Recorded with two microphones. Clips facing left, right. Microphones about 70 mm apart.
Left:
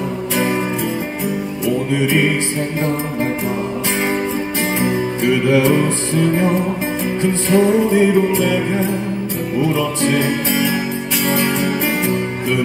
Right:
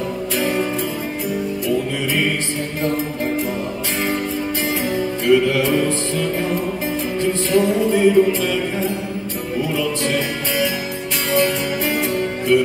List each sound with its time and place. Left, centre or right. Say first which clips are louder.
2.0 s music: left 5 dB; centre
4.7 s music: left 3 dB; left